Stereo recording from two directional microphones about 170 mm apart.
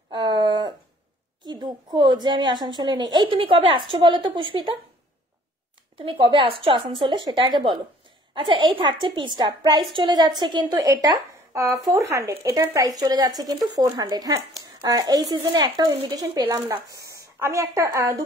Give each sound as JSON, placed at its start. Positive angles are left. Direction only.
{"t": 0.1, "sound": "a sound", "side_deg": -25}
{"t": 1.4, "sound": "speech", "side_deg": -25}
{"t": 5.9, "sound": "a woman's voice", "side_deg": -30}